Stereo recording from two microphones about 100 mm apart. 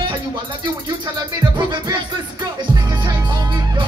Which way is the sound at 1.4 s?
45° right (ahead or behind).